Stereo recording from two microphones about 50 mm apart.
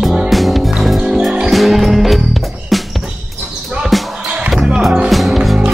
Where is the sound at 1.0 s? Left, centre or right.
Centre.